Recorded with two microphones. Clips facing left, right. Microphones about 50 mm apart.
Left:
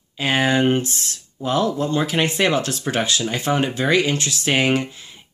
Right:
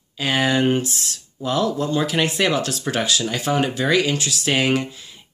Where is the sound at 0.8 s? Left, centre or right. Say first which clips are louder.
Even; left.